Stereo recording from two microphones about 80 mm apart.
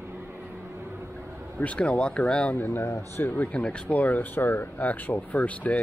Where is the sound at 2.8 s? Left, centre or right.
Left.